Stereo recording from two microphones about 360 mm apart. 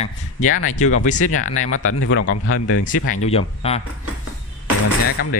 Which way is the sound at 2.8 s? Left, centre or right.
Left.